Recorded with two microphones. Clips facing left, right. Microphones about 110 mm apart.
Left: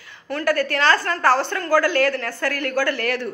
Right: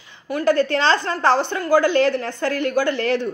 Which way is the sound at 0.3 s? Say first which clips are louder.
Right 3 dB; 15° right (ahead or behind).